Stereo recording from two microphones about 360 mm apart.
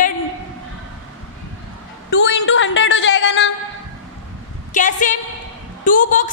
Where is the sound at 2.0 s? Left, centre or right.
Left.